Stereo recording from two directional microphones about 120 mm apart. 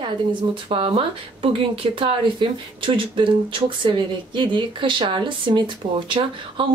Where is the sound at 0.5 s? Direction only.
45° right (ahead or behind).